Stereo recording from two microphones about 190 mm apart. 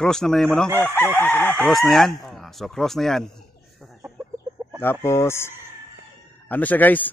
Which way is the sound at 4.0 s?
15° right (ahead or behind).